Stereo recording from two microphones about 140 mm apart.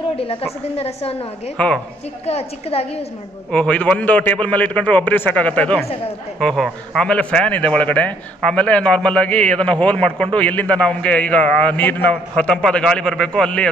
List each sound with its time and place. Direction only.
0.1 s a woman's voice: 45° left (ahead or behind)
1.6 s a man's voice: 10° left (ahead or behind)
2.2 s a woman's voice: 45° left (ahead or behind)
3.5 s a man's voice: 10° left (ahead or behind)